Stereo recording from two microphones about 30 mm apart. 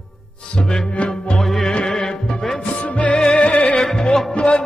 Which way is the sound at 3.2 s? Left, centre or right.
Left.